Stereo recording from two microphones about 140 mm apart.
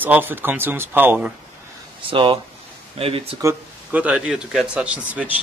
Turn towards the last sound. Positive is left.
turn(degrees=-10)  # may be behind; listen again after turning